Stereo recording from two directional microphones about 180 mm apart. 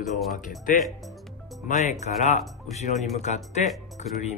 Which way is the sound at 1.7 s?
40° left (ahead or behind).